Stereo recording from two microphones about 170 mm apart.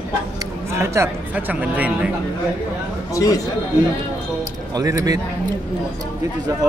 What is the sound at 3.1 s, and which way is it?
Speech, 20° left (ahead or behind).